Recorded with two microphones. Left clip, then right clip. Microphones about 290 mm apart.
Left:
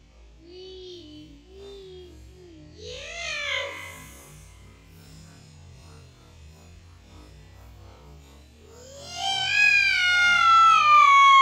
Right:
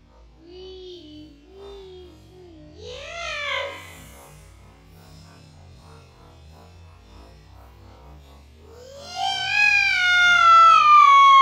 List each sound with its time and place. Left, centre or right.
0.5 s music: centre
8.6 s music: centre